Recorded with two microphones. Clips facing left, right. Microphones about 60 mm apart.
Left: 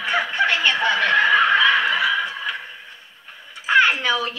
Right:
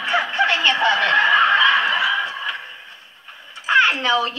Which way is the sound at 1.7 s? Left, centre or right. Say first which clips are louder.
Right 1 dB; right.